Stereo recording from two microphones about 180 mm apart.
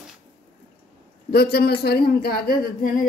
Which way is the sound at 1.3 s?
60° left (ahead or behind).